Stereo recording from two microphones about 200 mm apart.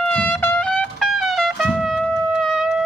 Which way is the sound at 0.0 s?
5° left (ahead or behind).